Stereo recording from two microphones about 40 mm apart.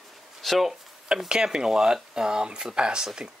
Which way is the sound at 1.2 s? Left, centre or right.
Centre.